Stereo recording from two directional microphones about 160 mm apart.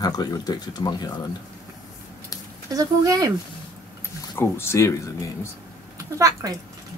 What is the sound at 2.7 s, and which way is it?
Speech, 20° right (ahead or behind).